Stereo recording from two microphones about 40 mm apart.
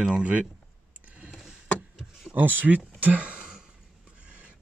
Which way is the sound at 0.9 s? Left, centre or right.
Right.